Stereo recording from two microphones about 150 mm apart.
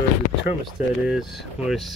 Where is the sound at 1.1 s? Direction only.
5° right (ahead or behind).